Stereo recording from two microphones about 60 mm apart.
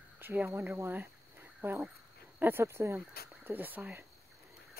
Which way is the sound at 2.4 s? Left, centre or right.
Right.